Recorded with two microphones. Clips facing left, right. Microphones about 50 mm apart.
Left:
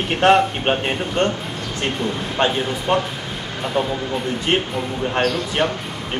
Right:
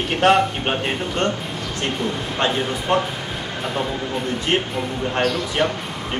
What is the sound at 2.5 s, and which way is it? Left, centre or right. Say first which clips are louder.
Speech: left 1 dB; centre.